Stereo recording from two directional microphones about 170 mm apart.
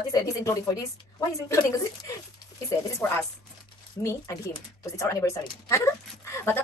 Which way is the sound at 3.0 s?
15° left (ahead or behind).